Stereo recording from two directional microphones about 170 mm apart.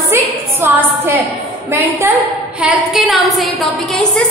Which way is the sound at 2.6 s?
Centre (ahead or behind).